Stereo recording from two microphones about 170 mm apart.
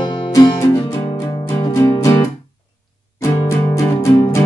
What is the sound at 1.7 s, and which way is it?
Music, 15° left (ahead or behind).